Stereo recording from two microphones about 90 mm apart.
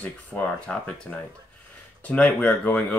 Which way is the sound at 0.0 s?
20° left (ahead or behind).